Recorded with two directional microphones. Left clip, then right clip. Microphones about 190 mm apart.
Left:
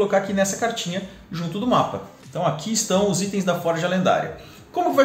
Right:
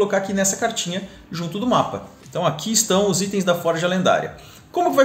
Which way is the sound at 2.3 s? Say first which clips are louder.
Right 2 dB; 40° right (ahead or behind).